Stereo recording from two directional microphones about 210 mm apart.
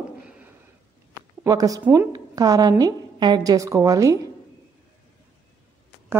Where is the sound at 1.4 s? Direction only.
15° right (ahead or behind).